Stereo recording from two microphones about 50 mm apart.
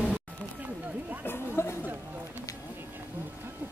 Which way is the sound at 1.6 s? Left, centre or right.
Left.